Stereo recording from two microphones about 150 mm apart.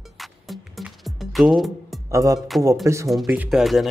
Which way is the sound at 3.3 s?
10° right (ahead or behind).